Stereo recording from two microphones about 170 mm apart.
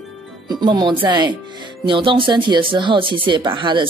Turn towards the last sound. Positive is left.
turn(degrees=-30)  # may be behind; listen again after turning